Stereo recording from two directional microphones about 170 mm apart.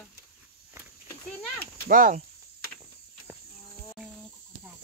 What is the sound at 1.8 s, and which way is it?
Speech, 55° right (ahead or behind).